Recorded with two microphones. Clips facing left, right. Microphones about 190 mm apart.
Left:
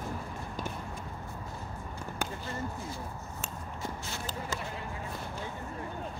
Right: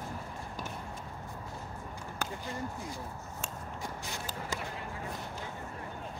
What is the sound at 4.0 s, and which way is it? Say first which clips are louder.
Run: left 2 dB; 15° right (ahead or behind).